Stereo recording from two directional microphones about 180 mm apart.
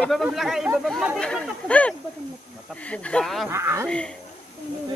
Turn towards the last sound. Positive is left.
turn(degrees=-15)  # may be behind; listen again after turning